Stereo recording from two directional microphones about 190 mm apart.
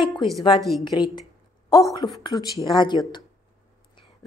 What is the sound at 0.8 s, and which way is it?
Speech, 25° left (ahead or behind).